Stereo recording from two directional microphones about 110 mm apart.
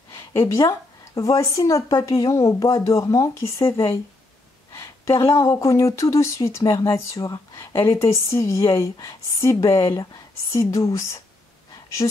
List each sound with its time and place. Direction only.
0.1 s speech: 25° left (ahead or behind)
4.7 s speech: 25° left (ahead or behind)
12.0 s speech: 45° left (ahead or behind)